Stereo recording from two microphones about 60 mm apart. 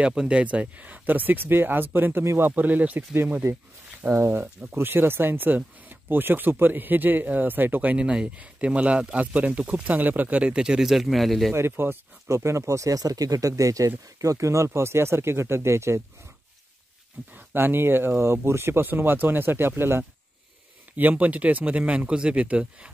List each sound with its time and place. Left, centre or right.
0.0 s speech: centre
4.1 s speech: right
8.0 s speech: centre
11.5 s speech: right
12.3 s speech: right
17.2 s speech: right
17.6 s speech: right; by 22.7 s centre